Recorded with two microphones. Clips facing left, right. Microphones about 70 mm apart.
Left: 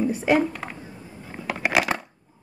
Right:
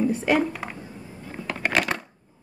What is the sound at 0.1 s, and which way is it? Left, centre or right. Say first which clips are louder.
Speech: left 1 dB; centre.